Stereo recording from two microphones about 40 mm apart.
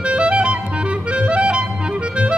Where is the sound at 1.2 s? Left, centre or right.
Right.